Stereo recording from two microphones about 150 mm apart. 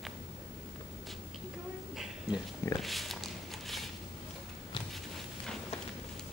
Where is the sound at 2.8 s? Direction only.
Centre (ahead or behind).